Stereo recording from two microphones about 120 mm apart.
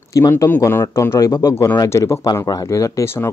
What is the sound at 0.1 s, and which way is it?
A man's voice, 25° left (ahead or behind).